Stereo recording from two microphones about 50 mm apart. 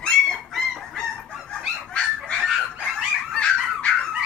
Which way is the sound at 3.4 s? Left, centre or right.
Left.